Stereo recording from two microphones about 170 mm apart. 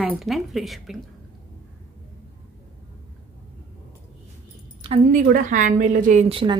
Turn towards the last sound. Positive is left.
turn(degrees=-35)  # may be behind; listen again after turning